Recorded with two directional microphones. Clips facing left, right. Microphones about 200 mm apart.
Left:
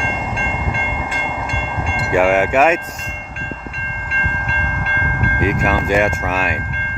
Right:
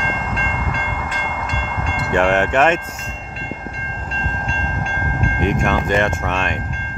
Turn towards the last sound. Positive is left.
turn(degrees=5)  # may be behind; listen again after turning